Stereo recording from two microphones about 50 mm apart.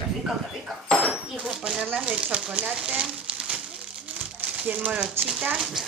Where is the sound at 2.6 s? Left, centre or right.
Centre.